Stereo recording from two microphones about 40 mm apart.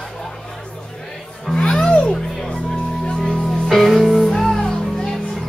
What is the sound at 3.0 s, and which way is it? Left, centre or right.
Music, left.